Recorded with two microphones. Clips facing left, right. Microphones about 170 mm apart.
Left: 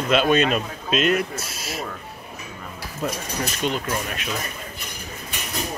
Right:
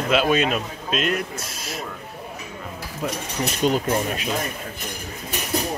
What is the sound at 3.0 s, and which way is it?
Speech, 10° right (ahead or behind).